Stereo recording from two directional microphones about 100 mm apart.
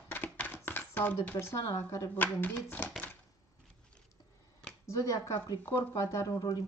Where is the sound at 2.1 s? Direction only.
15° left (ahead or behind).